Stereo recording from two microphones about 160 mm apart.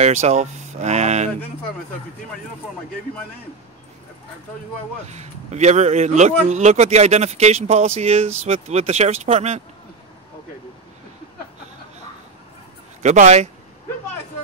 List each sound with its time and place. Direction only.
0.0 s a sound: 45° right (ahead or behind)
5.0 s speech: 45° right (ahead or behind)
13.0 s speech: 45° right (ahead or behind)